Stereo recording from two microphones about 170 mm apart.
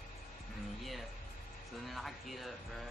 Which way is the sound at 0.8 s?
Centre (ahead or behind).